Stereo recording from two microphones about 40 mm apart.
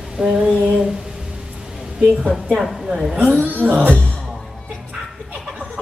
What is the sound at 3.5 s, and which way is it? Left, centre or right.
Speech, right.